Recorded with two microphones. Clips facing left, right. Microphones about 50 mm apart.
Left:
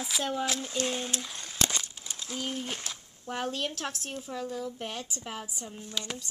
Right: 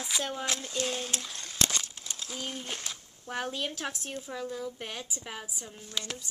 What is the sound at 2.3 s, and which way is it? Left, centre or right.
A woman's voice, centre.